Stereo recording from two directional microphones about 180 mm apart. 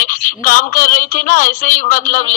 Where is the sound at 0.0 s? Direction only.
50° left (ahead or behind).